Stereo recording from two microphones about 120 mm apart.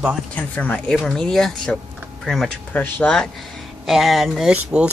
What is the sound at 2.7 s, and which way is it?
Speech, 15° left (ahead or behind).